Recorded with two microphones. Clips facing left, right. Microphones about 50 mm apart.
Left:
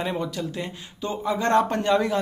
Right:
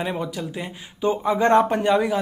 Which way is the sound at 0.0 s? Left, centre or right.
Centre.